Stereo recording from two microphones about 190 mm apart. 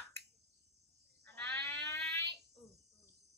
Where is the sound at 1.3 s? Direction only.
10° left (ahead or behind).